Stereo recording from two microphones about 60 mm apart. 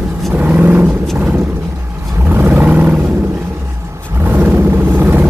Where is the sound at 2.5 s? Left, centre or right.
Right.